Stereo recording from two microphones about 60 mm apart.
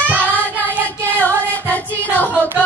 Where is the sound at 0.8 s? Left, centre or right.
Left.